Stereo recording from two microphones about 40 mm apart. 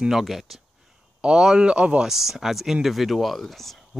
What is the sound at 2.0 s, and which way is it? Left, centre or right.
Speech, centre.